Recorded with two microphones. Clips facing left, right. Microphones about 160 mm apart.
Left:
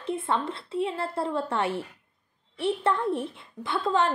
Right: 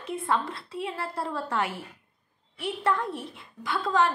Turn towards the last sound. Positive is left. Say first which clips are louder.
# even
turn(degrees=25)  # may be behind; listen again after turning